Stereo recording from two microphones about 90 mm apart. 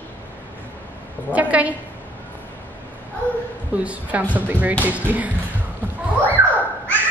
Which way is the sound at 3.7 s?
15° right (ahead or behind).